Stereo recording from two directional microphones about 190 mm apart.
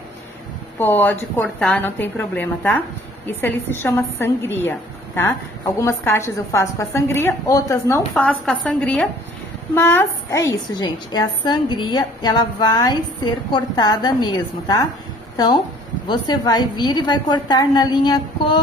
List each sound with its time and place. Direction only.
0.7 s a woman's voice: 10° left (ahead or behind)
16.1 s a woman's voice: 20° left (ahead or behind)